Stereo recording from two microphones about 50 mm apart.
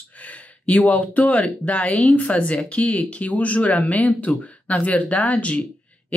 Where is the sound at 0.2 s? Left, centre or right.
Left.